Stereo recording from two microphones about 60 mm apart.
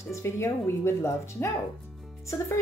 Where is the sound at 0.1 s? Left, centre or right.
Left.